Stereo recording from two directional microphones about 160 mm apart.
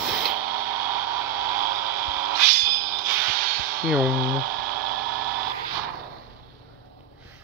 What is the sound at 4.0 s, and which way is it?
Speech, 65° right (ahead or behind).